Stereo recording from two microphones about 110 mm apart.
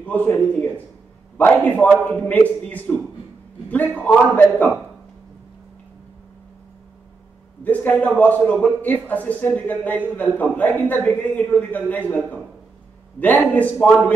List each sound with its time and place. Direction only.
0.0 s a man's voice: 15° left (ahead or behind)
7.6 s a man's voice: 15° left (ahead or behind)